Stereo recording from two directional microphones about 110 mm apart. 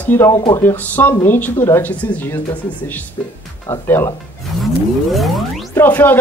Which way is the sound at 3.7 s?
25° left (ahead or behind).